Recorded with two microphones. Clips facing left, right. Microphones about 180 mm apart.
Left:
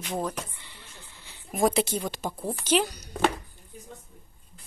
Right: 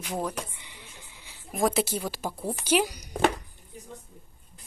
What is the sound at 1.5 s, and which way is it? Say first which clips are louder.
A woman's voice: left 1 dB; centre (ahead or behind).